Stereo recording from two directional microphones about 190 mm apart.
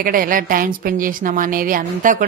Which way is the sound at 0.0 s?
50° right (ahead or behind).